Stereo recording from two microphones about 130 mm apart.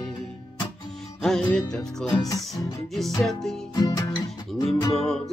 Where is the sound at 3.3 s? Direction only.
5° left (ahead or behind).